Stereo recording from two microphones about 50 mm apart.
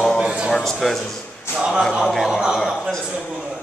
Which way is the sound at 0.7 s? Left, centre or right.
Centre.